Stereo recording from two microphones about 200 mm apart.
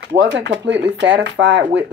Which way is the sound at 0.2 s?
60° right (ahead or behind).